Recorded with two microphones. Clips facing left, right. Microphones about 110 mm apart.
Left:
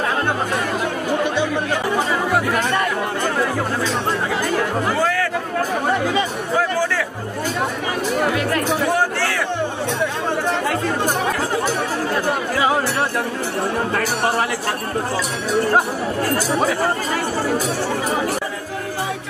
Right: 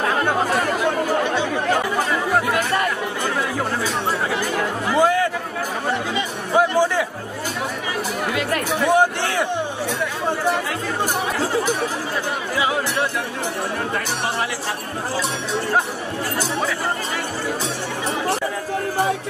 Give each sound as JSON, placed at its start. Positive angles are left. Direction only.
{"t": 4.9, "sound": "chatter", "side_deg": -20}
{"t": 6.5, "sound": "music", "side_deg": -20}
{"t": 8.9, "sound": "a sound", "side_deg": -20}